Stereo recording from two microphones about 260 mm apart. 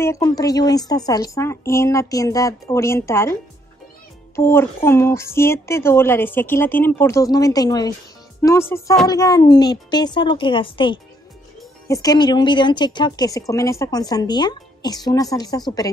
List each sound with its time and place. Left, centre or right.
0.0 s speech: centre
4.4 s speech: centre